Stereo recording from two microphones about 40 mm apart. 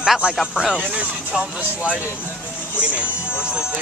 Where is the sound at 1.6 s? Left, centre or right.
Right.